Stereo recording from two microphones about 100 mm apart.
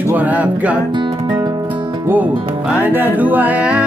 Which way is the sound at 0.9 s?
50° right (ahead or behind).